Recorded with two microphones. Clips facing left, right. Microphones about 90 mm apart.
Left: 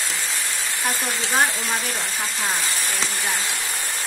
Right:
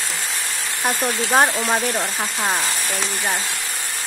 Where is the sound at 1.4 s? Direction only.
55° right (ahead or behind).